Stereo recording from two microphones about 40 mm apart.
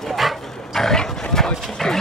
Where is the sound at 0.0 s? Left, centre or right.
Centre.